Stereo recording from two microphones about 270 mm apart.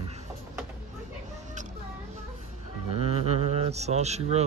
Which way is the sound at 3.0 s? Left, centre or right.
Right.